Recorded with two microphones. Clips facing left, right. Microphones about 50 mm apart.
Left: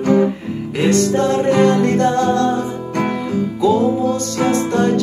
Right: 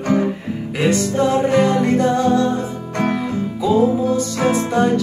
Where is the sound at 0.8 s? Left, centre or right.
Centre.